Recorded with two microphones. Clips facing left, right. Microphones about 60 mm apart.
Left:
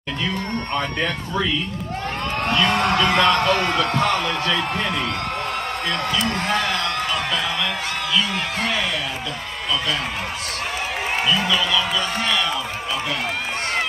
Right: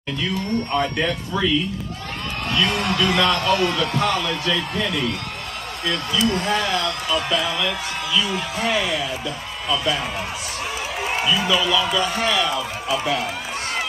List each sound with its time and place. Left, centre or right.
2.5 s a man's voice: left
3.3 s a man's voice: left
7.2 s speech: centre
11.1 s speech: centre